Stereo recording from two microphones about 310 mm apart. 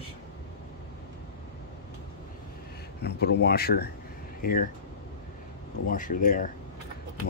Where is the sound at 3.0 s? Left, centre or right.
Left.